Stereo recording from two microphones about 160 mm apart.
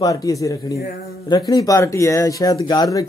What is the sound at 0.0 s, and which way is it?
Speech, 20° left (ahead or behind).